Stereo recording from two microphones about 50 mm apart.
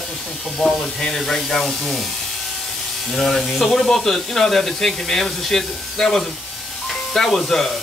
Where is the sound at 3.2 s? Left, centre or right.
Centre.